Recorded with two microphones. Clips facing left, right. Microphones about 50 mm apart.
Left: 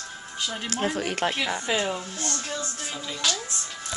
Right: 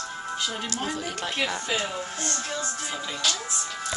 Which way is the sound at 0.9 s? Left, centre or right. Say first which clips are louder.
Left 5 dB; left.